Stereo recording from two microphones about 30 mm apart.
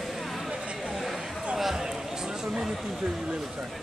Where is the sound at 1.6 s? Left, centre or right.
Centre.